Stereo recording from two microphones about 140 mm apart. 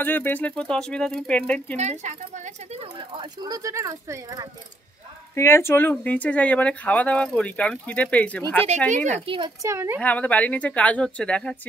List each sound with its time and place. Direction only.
0.0 s speech: 15° left (ahead or behind)
1.8 s speech: 55° right (ahead or behind); by 4.5 s 25° right (ahead or behind)
5.3 s speech: 20° left (ahead or behind)
8.9 s speech: 55° right (ahead or behind)
9.2 s speech: 40° right (ahead or behind)
9.6 s a woman's voice: 20° right (ahead or behind)
9.9 s speech: 10° left (ahead or behind)